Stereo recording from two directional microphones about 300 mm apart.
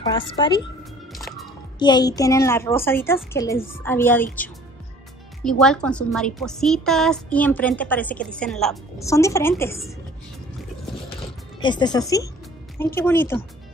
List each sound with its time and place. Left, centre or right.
0.1 s a woman's voice: centre
1.1 s music: centre
1.8 s a woman's voice: centre
11.6 s a woman's voice: centre